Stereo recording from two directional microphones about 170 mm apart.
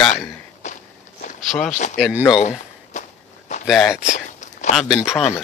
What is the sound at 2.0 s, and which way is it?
Speech, 5° right (ahead or behind).